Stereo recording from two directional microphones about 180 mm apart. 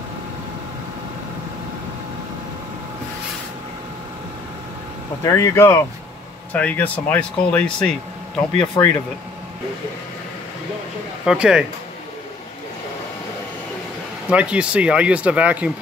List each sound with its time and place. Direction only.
5.2 s speech: 20° left (ahead or behind)
8.8 s speech: 20° left (ahead or behind)
11.2 s speech: 5° right (ahead or behind)
14.3 s speech: 5° right (ahead or behind)